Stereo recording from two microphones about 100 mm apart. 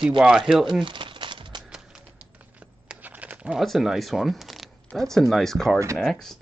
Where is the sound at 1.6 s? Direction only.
10° right (ahead or behind).